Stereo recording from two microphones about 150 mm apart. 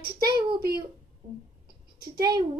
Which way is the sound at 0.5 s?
90° right.